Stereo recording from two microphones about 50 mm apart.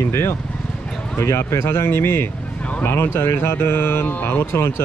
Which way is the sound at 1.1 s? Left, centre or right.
Left.